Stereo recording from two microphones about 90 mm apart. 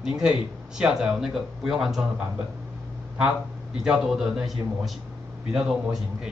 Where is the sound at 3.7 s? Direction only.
5° right (ahead or behind).